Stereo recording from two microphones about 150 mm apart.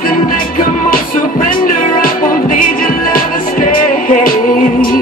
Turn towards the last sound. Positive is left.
turn(degrees=70)  # may be behind; listen again after turning